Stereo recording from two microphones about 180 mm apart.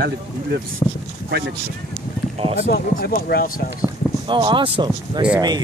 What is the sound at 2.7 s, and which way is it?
Speech, 60° left (ahead or behind).